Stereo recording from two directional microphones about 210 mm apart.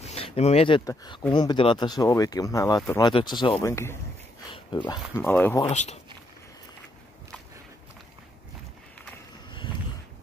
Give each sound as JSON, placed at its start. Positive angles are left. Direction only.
{"t": 0.0, "sound": "speech", "side_deg": 30}
{"t": 5.2, "sound": "speech", "side_deg": 10}
{"t": 5.6, "sound": "speech", "side_deg": 30}
{"t": 9.5, "sound": "a sound", "side_deg": 25}